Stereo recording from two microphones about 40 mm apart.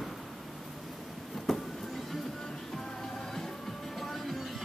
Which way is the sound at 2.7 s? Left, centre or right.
Centre.